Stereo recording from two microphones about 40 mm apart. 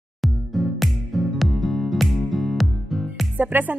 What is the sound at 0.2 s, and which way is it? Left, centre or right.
Music, centre.